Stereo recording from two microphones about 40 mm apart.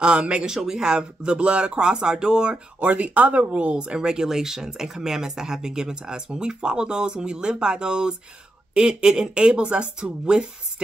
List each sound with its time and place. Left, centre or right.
0.0 s speech: right
0.5 s speech: centre
2.5 s speech: right
3.7 s speech: right